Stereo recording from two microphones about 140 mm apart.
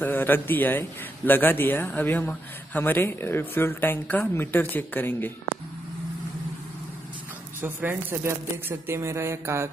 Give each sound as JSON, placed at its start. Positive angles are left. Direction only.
{"t": 0.0, "sound": "a man's voice", "side_deg": 15}
{"t": 7.6, "sound": "speech", "side_deg": -15}